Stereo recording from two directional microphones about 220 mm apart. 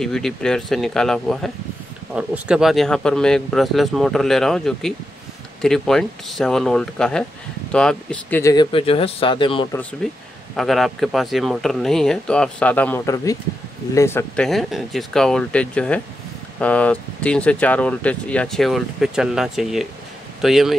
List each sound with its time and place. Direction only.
0.0 s speech: centre (ahead or behind); by 9.8 s 20° left (ahead or behind)
10.0 s speech: centre (ahead or behind)